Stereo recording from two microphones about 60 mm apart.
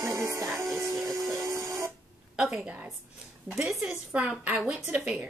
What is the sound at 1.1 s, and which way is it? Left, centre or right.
Printer, right.